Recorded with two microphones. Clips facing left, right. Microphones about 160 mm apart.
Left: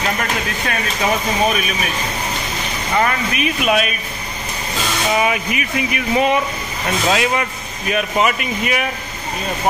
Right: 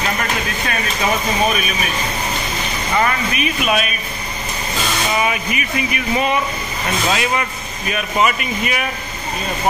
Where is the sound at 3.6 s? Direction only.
90° left.